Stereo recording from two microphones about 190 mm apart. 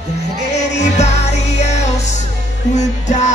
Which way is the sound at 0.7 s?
35° left (ahead or behind).